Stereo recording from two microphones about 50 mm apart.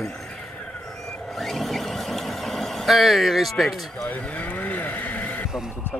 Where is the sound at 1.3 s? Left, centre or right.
Centre.